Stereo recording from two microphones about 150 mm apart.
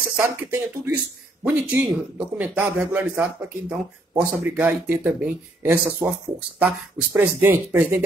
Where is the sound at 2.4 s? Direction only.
10° right (ahead or behind).